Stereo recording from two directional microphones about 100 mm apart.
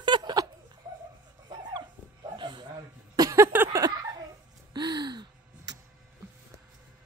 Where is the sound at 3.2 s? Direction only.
35° right (ahead or behind).